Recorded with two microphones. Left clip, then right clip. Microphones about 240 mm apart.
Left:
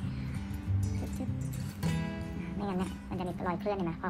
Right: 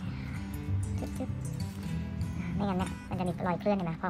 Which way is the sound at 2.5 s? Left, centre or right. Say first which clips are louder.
Right 3 dB; right.